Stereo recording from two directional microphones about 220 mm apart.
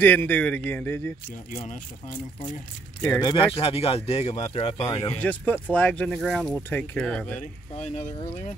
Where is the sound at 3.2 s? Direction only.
20° left (ahead or behind).